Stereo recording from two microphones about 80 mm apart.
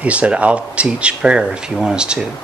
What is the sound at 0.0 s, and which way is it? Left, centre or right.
Speech, centre.